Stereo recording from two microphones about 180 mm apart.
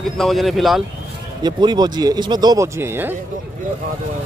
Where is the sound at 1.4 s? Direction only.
25° right (ahead or behind).